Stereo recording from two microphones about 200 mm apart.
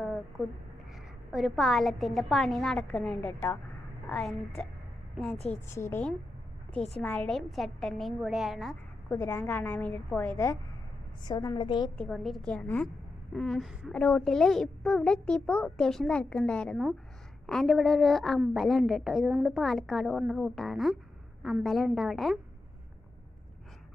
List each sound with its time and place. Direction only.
0.0 s a sound: centre (ahead or behind)
1.3 s a woman's voice: centre (ahead or behind)
7.0 s a woman's voice: 5° left (ahead or behind)
9.1 s a woman's voice: 10° left (ahead or behind)
12.0 s a woman's voice: centre (ahead or behind)